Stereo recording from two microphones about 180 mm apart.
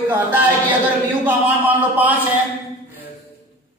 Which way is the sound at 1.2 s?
10° right (ahead or behind).